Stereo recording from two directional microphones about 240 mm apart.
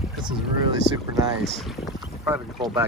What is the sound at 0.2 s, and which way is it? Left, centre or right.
Speech, centre.